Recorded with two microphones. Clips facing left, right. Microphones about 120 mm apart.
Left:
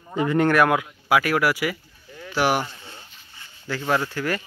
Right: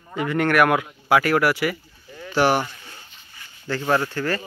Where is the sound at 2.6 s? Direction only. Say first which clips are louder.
Left 1 dB; 25° left (ahead or behind).